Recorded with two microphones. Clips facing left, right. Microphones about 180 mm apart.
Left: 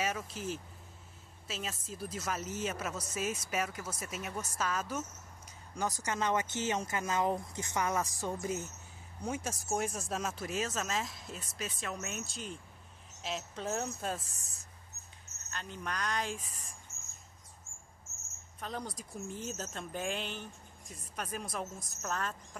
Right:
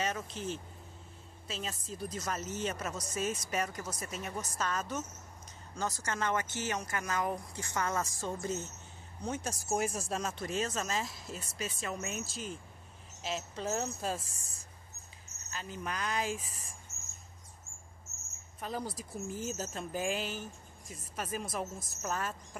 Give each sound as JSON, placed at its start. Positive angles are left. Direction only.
{"t": 0.0, "sound": "a woman's voice", "side_deg": 5}
{"t": 18.6, "sound": "speech", "side_deg": -5}